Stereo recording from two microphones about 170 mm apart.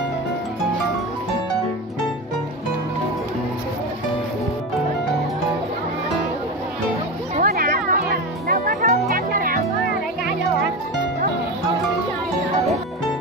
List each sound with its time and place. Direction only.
7.4 s music: 60° right (ahead or behind)